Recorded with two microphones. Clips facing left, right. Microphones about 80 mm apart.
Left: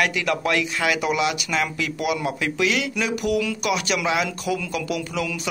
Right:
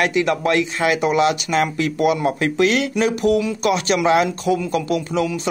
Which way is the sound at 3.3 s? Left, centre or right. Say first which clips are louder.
Right 4 dB; right.